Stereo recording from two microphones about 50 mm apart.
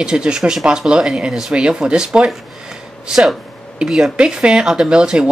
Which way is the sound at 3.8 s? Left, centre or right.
Centre.